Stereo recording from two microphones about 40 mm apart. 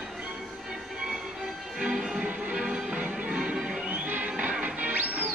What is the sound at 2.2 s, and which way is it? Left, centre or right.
Music, right.